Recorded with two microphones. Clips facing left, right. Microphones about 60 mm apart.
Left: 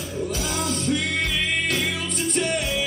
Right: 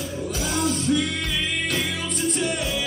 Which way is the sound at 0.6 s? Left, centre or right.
Left.